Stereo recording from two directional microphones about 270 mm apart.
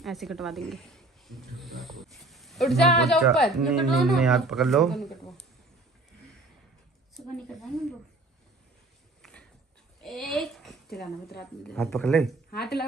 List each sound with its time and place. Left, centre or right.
0.0 s speech: centre
7.2 s speech: centre
9.2 s a sound: centre
10.0 s a woman's voice: centre
10.9 s a woman's voice: left
11.7 s speech: centre
12.4 s speech: left